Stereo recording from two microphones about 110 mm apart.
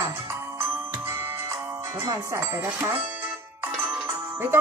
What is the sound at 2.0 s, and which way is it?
Music, 25° right (ahead or behind).